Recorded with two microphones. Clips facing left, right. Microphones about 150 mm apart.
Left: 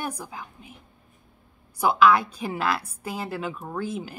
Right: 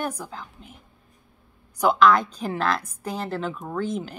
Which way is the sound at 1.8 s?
5° left (ahead or behind).